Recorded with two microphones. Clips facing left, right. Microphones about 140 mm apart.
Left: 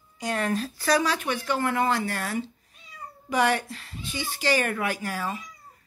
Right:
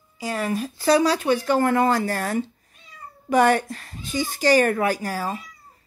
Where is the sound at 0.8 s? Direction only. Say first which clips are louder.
Right 7 dB; 30° right (ahead or behind).